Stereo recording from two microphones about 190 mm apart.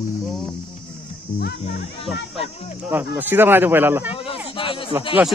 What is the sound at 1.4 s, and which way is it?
Speech, 60° left (ahead or behind).